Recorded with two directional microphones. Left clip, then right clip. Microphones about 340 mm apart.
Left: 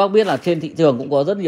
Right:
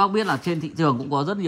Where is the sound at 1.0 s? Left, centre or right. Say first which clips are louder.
Left 7 dB; right.